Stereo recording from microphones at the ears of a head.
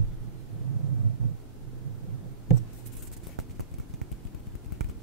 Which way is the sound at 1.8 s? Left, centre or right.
Right.